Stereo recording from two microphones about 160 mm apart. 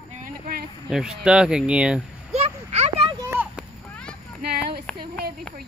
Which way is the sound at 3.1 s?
15° right (ahead or behind).